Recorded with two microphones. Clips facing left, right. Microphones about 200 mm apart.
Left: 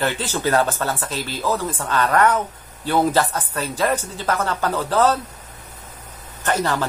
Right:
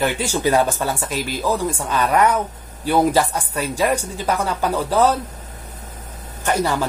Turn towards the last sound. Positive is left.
turn(degrees=-10)  # may be behind; listen again after turning